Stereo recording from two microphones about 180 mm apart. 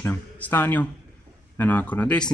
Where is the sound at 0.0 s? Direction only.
15° left (ahead or behind).